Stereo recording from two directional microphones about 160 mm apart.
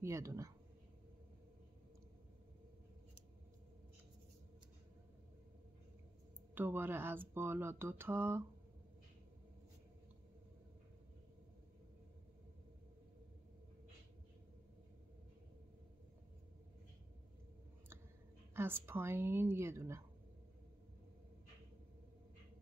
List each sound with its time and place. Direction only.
0.0 s speech: 20° right (ahead or behind)
6.5 s speech: 15° right (ahead or behind)
18.5 s speech: 15° right (ahead or behind)